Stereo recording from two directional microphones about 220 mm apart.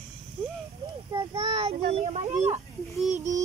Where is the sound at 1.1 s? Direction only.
25° right (ahead or behind).